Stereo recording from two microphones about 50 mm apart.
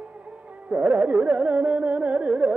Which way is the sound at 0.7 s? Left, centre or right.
Right.